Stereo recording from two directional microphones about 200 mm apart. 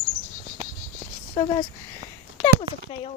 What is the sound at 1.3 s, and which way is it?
Speech, 25° left (ahead or behind).